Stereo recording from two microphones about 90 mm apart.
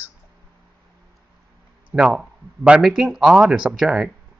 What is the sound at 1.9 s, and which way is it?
Speech, 10° right (ahead or behind).